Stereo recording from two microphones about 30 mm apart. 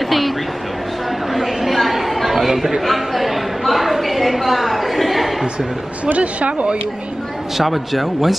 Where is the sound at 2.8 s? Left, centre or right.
Centre.